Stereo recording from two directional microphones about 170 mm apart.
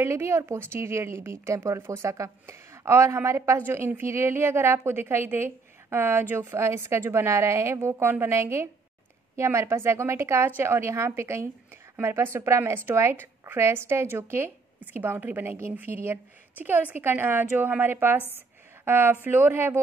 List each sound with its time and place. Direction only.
0.0 s speech: 15° right (ahead or behind)